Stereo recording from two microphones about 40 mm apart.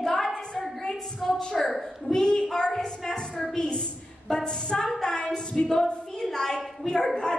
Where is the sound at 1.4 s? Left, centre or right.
Centre.